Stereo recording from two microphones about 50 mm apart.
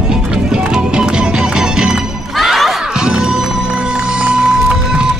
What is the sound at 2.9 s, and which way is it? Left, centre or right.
Music, centre.